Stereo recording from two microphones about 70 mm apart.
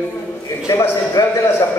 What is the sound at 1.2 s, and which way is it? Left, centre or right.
Speech, left.